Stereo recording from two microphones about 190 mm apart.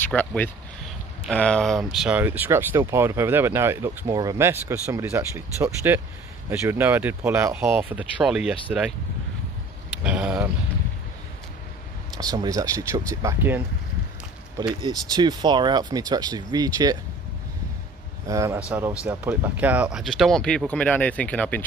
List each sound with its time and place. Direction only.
0.1 s speech: 10° left (ahead or behind)
10.0 s speech: 5° right (ahead or behind)
12.2 s speech: 20° right (ahead or behind)
14.8 s speech: 20° right (ahead or behind)
18.2 s speech: 15° right (ahead or behind); by 21.6 s 10° left (ahead or behind)